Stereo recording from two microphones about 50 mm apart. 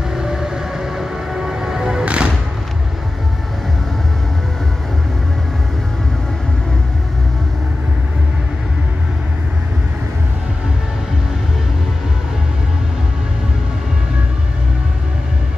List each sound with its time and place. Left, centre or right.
0.1 s music: centre